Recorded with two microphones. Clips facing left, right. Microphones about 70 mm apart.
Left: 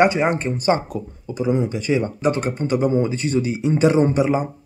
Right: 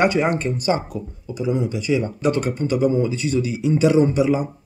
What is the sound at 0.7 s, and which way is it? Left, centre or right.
Speech, left.